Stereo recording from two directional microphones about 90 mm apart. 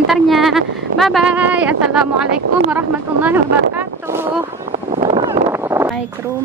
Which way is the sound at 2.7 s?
20° right (ahead or behind).